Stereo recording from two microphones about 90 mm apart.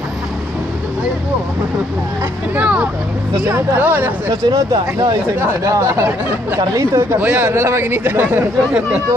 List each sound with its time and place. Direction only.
2.5 s vehicle: 15° right (ahead or behind)
3.4 s speech: 25° right (ahead or behind)
4.3 s speech: 50° right (ahead or behind)
5.6 s speech: 35° right (ahead or behind)
7.2 s speech: 20° right (ahead or behind)
7.4 s speech: 30° right (ahead or behind)